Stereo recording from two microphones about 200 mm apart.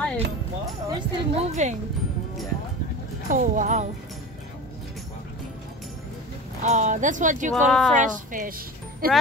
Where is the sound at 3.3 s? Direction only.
40° right (ahead or behind).